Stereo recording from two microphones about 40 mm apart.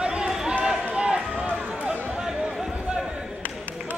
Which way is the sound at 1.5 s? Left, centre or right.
Right.